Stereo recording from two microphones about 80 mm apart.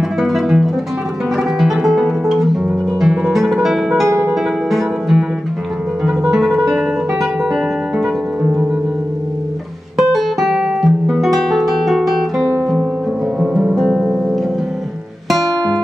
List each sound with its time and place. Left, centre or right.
0.2 s music: centre
4.1 s music: right
4.6 s music: centre
6.0 s guitar: centre
8.0 s harp: centre
9.9 s guitar: centre
13.4 s music: centre